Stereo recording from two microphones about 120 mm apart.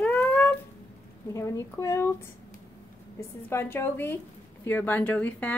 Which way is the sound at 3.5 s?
20° left (ahead or behind).